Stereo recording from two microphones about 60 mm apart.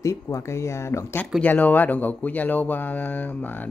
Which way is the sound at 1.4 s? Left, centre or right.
Left.